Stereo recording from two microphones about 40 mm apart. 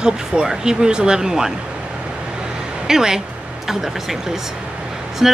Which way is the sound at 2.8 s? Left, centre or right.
Centre.